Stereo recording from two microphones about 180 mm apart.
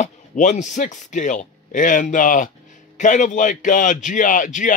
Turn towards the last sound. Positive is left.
turn(degrees=45)  # may be behind; listen again after turning